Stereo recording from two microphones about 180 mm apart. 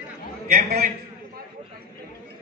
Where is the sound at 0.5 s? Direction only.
55° right (ahead or behind).